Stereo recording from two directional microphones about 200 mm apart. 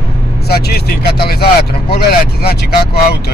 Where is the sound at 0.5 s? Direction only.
50° left (ahead or behind).